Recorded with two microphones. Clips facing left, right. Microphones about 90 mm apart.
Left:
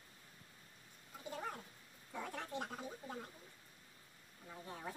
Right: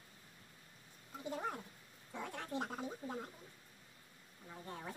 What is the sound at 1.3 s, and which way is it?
Speech, 25° right (ahead or behind).